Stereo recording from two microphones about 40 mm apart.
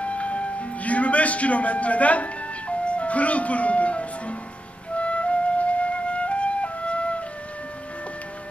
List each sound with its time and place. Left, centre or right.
0.0 s music: left
2.8 s speech: left
4.9 s flute: left